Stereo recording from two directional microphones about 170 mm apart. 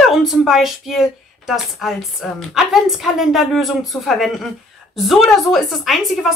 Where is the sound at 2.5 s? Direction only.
Centre (ahead or behind).